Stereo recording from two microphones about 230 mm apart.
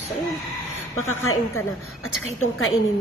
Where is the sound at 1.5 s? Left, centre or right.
Left.